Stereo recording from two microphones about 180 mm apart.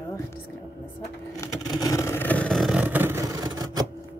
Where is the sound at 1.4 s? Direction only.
20° left (ahead or behind); by 3.9 s 20° right (ahead or behind).